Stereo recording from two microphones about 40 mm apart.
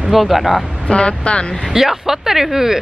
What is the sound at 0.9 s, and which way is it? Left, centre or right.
Speech, left.